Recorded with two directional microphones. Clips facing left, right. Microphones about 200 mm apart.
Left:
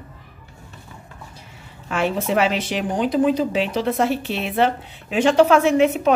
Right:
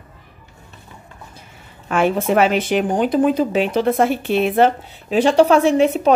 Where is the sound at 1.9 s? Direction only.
55° right (ahead or behind).